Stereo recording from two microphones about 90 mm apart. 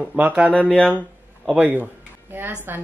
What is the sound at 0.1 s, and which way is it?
Speech, 15° right (ahead or behind).